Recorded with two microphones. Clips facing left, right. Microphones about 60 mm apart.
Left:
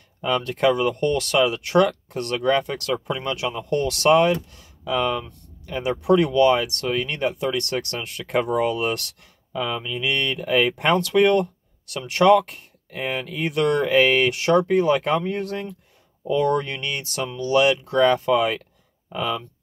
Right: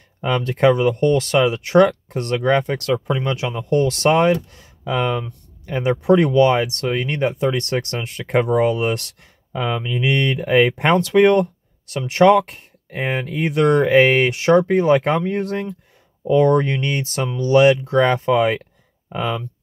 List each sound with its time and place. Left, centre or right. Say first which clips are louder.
0.2 s speech: right 4 dB; right
3.9 s speech: left 2 dB; right